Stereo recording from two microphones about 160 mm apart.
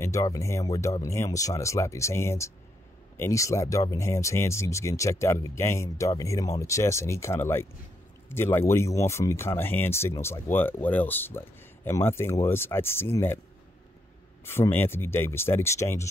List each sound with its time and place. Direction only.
0.0 s speech: 20° left (ahead or behind)
14.4 s speech: 15° left (ahead or behind)